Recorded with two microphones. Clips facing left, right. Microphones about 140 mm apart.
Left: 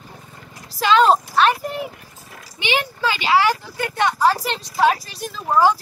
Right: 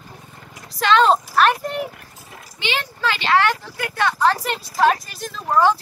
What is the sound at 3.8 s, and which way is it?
Speech, 20° left (ahead or behind).